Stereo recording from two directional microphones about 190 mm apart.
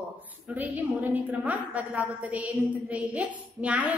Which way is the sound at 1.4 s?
10° right (ahead or behind).